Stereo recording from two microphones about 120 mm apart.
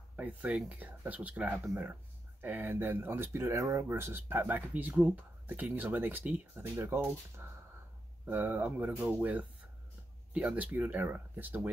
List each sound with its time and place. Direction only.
0.1 s speech: 15° right (ahead or behind)